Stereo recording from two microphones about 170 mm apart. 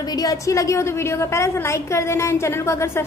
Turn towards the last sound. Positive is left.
turn(degrees=15)  # may be behind; listen again after turning